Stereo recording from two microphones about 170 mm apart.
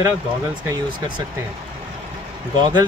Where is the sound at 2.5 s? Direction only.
25° right (ahead or behind).